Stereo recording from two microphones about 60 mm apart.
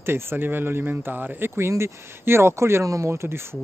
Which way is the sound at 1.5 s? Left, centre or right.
Right.